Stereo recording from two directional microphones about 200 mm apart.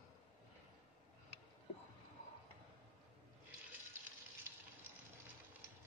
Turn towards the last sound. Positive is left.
turn(degrees=-15)  # may be behind; listen again after turning